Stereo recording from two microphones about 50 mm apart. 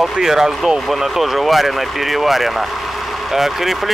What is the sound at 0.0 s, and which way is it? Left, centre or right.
Speech, centre.